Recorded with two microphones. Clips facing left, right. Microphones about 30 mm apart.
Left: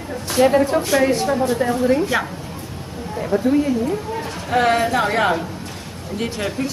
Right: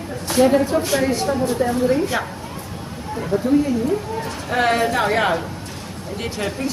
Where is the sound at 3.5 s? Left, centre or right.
Centre.